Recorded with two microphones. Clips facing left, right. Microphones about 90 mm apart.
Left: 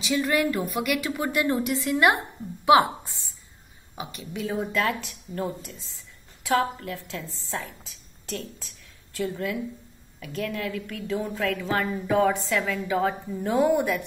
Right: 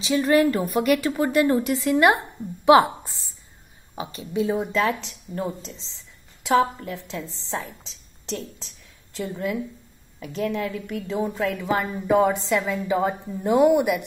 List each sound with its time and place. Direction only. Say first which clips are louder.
0.0 s a woman's voice: right 5 dB; 25° right (ahead or behind)
4.0 s a woman's voice: right 7 dB; 20° right (ahead or behind)